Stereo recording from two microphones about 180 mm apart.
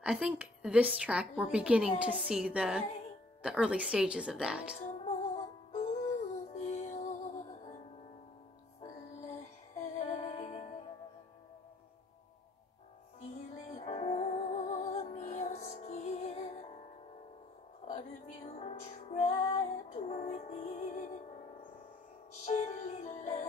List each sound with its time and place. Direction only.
0.0 s a woman's voice: 5° right (ahead or behind)
4.7 s music: 40° left (ahead or behind)
9.9 s music: 45° left (ahead or behind)
13.7 s music: 35° left (ahead or behind)
17.8 s music: 40° left (ahead or behind)
22.4 s music: 40° left (ahead or behind)